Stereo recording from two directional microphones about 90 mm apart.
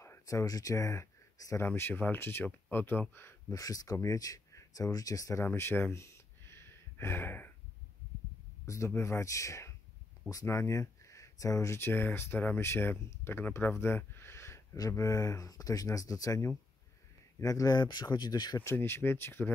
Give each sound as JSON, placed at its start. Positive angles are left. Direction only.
{"t": 0.0, "sound": "speech", "side_deg": 35}
{"t": 1.7, "sound": "speech", "side_deg": 20}
{"t": 3.5, "sound": "speech", "side_deg": 40}
{"t": 5.4, "sound": "a sound", "side_deg": 25}
{"t": 8.6, "sound": "speech", "side_deg": 35}
{"t": 18.6, "sound": "speech", "side_deg": 30}